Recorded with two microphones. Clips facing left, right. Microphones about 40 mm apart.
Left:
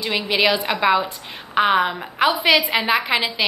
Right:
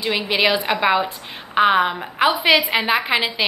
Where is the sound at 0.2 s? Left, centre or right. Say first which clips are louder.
Left 1 dB; centre.